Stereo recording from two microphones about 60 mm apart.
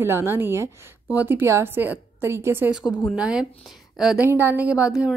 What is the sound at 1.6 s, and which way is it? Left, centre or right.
Speech, right.